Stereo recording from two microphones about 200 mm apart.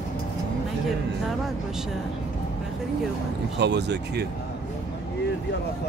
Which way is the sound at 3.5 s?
55° right (ahead or behind).